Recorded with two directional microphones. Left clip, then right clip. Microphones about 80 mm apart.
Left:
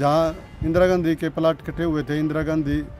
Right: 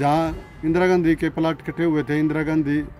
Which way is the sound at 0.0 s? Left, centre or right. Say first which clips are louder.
Left 1 dB; left.